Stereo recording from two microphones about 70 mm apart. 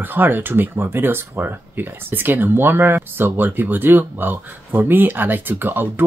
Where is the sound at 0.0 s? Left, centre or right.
Right.